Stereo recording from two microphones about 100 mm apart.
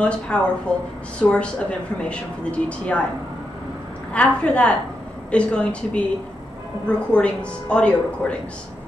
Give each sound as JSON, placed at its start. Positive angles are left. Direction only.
{"t": 0.0, "sound": "a woman's voice", "side_deg": 10}
{"t": 4.1, "sound": "a woman's voice", "side_deg": 10}
{"t": 7.2, "sound": "a woman's voice", "side_deg": 10}